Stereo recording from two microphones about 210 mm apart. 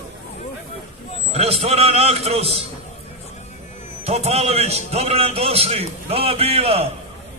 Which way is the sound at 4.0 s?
30° right (ahead or behind).